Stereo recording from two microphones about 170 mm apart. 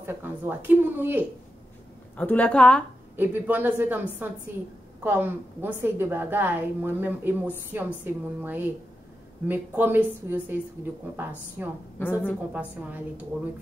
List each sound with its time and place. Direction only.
0.0 s a woman's voice: 15° right (ahead or behind)
2.1 s speech: 10° left (ahead or behind)
3.2 s a woman's voice: 10° right (ahead or behind)
12.0 s speech: 10° left (ahead or behind)
12.5 s a woman's voice: 10° right (ahead or behind)